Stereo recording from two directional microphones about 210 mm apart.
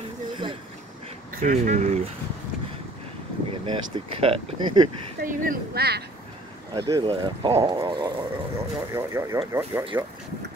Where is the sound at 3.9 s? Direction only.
25° right (ahead or behind).